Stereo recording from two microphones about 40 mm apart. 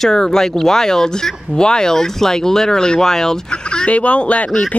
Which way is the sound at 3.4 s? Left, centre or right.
Left.